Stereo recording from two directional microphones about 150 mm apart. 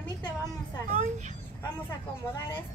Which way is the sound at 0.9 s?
55° right (ahead or behind).